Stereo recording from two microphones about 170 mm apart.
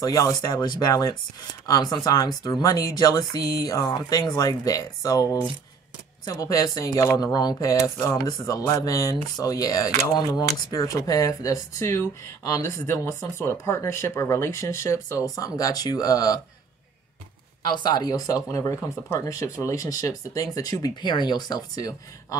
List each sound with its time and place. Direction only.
0.0 s speech: 20° left (ahead or behind)
17.6 s speech: 25° left (ahead or behind)